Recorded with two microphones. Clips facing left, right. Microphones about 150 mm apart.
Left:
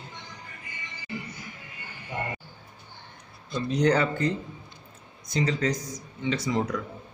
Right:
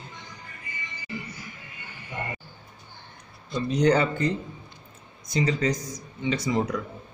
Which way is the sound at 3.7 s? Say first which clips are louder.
Right 2 dB; 15° right (ahead or behind).